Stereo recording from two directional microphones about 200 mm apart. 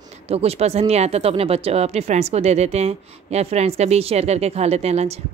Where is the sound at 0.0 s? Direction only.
30° right (ahead or behind).